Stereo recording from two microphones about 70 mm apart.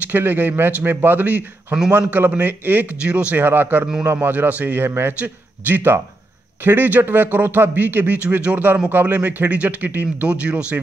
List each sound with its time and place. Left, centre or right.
0.1 s speech: right
3.0 s speech: centre
3.4 s speech: right
4.0 s a man's voice: right
4.3 s speech: right